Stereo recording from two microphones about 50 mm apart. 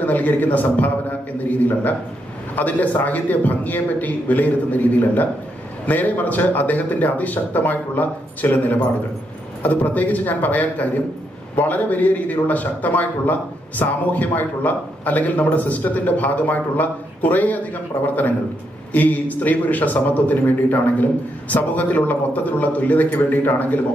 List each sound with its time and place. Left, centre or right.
0.0 s a man's voice: left
18.9 s a man's voice: left